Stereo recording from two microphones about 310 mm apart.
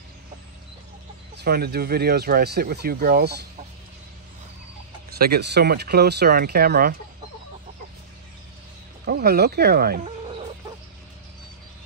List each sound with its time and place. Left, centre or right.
1.3 s speech: right
5.2 s speech: right
9.0 s fowl: right